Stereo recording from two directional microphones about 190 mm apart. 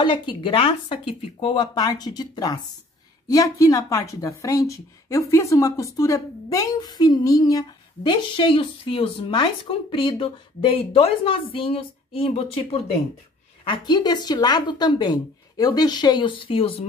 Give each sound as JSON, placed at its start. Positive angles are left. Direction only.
{"t": 0.0, "sound": "speech", "side_deg": 25}